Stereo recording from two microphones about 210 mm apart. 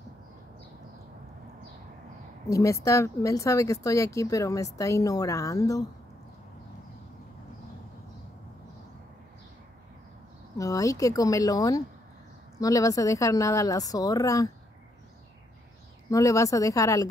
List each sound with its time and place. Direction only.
2.5 s speech: 15° left (ahead or behind)
10.6 s speech: 15° left (ahead or behind)
16.1 s speech: 15° left (ahead or behind)